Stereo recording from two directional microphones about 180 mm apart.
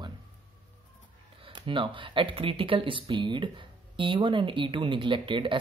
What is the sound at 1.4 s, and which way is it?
Speech, 25° right (ahead or behind).